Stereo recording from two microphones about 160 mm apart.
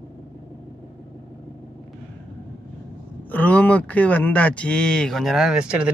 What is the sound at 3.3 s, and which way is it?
Speech, 10° left (ahead or behind).